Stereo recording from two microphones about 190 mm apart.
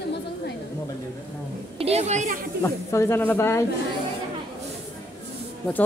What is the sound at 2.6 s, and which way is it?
Speech, 15° left (ahead or behind).